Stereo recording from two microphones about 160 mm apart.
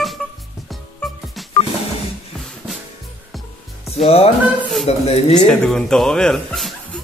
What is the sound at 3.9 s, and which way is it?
Speech, 40° left (ahead or behind).